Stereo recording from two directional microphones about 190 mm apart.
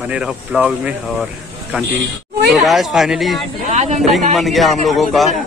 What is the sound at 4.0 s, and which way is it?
Speech, centre (ahead or behind).